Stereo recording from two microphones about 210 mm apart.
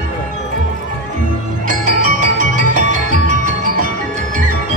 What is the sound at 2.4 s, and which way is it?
Music, 35° right (ahead or behind).